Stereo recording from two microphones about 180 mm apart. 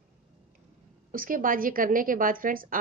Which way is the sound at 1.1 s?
50° right (ahead or behind).